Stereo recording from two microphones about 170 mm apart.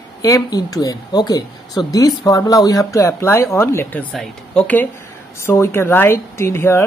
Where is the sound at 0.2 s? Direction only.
20° left (ahead or behind).